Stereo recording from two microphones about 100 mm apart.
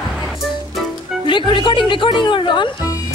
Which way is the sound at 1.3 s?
55° left (ahead or behind).